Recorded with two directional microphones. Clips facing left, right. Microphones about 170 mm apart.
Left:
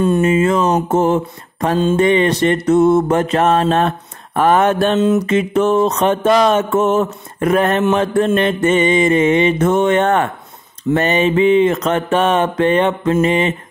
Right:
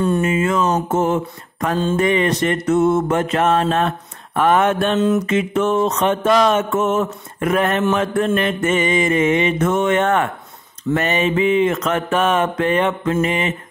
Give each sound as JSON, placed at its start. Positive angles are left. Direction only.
{"t": 0.2, "sound": "mantra", "side_deg": 35}